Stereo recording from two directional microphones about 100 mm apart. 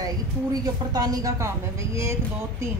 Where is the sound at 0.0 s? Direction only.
40° right (ahead or behind).